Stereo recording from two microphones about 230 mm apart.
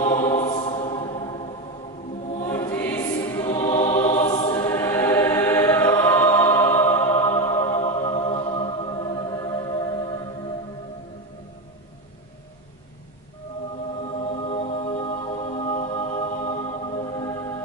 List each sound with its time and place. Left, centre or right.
0.0 s choir: centre
2.5 s choir: centre
3.3 s music: centre
4.3 s choir: left
4.6 s choir: centre
14.1 s music: left